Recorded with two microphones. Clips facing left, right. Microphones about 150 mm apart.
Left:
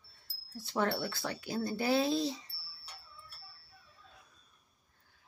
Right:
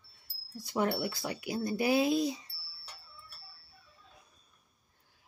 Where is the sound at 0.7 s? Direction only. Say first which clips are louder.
Right 2 dB; 15° right (ahead or behind).